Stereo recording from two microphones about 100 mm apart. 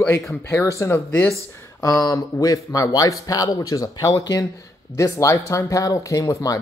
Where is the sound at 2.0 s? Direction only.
35° left (ahead or behind).